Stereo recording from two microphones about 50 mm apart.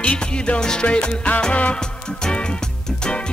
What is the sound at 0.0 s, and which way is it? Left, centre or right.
Music, left.